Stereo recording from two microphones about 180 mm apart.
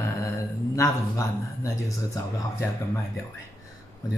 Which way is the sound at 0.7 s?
15° left (ahead or behind).